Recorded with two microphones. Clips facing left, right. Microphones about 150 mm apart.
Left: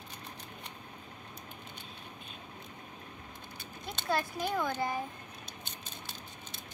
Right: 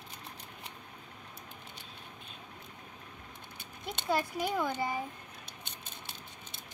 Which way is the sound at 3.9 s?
15° right (ahead or behind).